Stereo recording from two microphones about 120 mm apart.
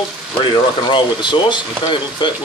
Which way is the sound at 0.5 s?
40° left (ahead or behind).